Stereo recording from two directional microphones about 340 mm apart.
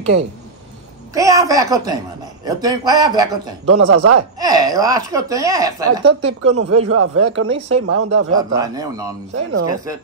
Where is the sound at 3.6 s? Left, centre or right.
Right.